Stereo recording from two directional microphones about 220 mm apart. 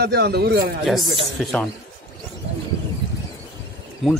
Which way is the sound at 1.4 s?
5° left (ahead or behind).